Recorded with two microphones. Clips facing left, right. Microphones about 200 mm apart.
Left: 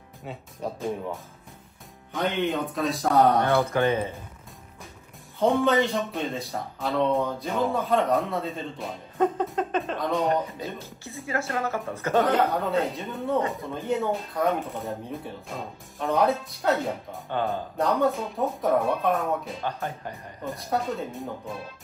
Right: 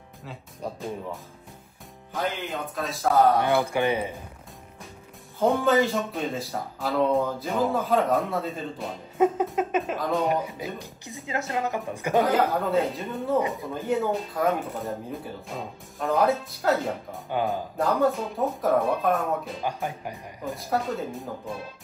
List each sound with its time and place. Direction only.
0.2 s speech: centre (ahead or behind)
3.6 s speech: 15° right (ahead or behind)
5.4 s speech: centre (ahead or behind)
10.6 s speech: 15° right (ahead or behind)
12.2 s speech: centre (ahead or behind)
17.3 s speech: 10° right (ahead or behind)
19.7 s speech: 15° right (ahead or behind)
20.4 s speech: centre (ahead or behind)